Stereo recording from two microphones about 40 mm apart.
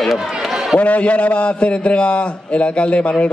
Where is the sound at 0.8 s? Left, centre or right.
Left.